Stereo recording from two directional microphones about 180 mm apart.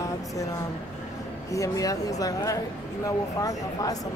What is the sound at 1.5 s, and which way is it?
Speech, 20° left (ahead or behind).